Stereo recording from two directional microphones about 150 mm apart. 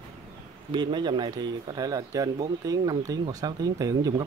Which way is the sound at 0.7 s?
30° right (ahead or behind).